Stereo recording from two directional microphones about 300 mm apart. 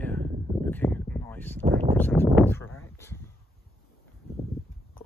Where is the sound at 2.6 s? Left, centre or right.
Left.